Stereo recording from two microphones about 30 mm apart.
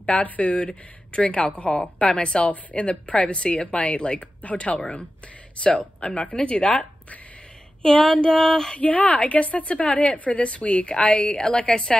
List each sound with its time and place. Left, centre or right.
0.2 s a woman's voice: left
1.6 s a woman's voice: left
2.7 s a woman's voice: left
4.4 s a woman's voice: left
7.8 s a sound: centre
8.7 s a woman's voice: left
10.9 s a woman's voice: left
11.4 s a woman's voice: left